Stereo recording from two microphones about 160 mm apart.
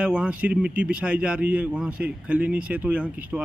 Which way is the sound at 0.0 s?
5° right (ahead or behind).